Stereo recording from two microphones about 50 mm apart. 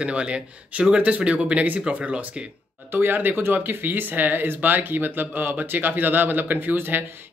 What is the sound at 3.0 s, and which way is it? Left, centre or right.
Speech, right.